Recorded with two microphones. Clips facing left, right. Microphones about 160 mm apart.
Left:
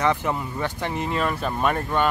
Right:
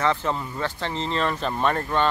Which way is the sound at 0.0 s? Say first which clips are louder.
Left 1 dB; 15° left (ahead or behind).